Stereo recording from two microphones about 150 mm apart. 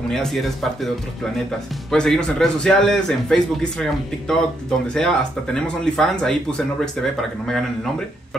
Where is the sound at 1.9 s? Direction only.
5° left (ahead or behind).